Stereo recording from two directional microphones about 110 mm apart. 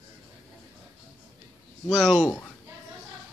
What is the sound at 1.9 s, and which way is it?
Speech, centre (ahead or behind).